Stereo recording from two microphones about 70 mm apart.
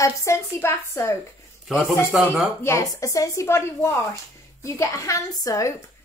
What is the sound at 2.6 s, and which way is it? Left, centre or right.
A woman's voice, left.